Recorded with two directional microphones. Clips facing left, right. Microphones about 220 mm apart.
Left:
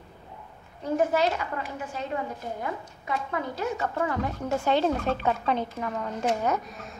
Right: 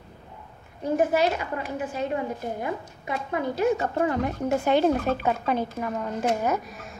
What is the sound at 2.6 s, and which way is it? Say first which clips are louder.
Speech: right 3 dB; 15° right (ahead or behind).